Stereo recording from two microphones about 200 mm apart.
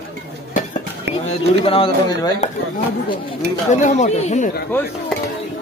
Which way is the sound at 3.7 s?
35° left (ahead or behind).